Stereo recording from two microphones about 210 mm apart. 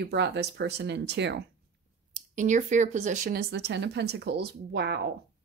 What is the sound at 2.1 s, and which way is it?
Speech, 35° right (ahead or behind).